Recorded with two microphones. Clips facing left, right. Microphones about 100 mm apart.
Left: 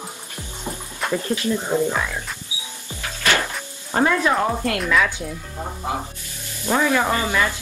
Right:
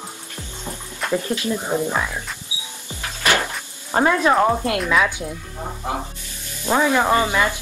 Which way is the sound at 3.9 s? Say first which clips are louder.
Right 2 dB; 20° right (ahead or behind).